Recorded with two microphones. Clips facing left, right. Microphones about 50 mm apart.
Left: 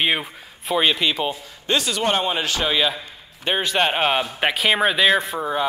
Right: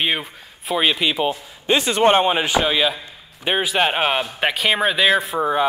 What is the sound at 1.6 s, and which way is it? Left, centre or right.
A man's voice, right.